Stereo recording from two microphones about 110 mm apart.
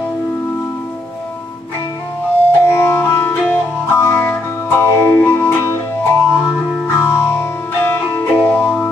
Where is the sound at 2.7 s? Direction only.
25° left (ahead or behind).